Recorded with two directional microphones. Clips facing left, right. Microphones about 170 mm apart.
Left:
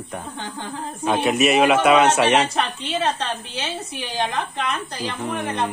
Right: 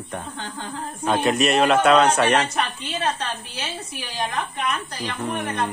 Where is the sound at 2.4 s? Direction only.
30° left (ahead or behind).